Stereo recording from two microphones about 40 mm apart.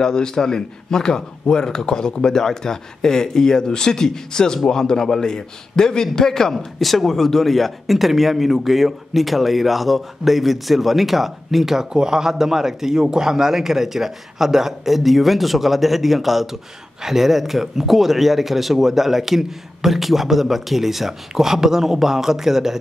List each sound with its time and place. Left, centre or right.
0.0 s a man's voice: centre
6.8 s speech: centre